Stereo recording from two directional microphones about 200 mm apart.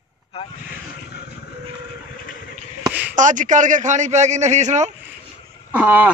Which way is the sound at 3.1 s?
40° right (ahead or behind).